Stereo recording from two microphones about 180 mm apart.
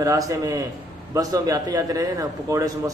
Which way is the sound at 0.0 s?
20° right (ahead or behind).